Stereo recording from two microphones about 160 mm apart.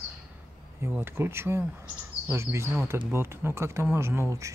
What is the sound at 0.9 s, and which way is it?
Speech, 15° right (ahead or behind).